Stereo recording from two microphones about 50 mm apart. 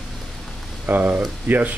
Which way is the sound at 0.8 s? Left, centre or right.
Right.